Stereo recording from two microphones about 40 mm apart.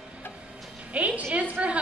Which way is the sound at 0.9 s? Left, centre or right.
Right.